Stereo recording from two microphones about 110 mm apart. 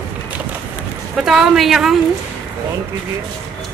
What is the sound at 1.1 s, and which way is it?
Speech, 5° right (ahead or behind).